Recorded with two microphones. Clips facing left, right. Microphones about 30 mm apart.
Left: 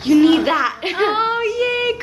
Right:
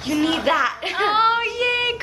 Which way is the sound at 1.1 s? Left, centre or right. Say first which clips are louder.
Even; centre.